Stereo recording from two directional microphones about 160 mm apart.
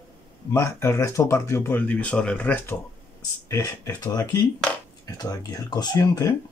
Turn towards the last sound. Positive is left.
turn(degrees=20)  # may be behind; listen again after turning